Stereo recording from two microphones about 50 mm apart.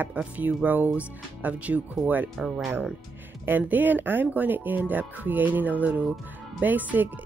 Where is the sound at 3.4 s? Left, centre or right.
Right.